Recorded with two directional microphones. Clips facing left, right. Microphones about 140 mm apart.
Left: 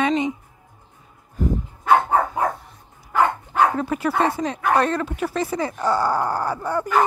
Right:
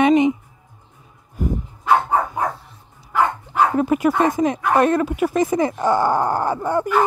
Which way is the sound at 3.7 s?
15° right (ahead or behind).